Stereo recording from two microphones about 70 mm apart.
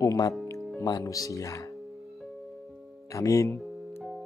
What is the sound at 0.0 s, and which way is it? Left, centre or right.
Speech, left.